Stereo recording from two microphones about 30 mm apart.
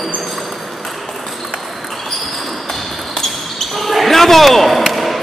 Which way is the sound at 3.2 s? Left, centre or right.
Centre.